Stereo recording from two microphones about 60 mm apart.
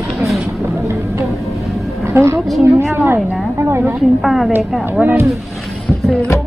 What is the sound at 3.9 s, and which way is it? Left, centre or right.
Speech, centre.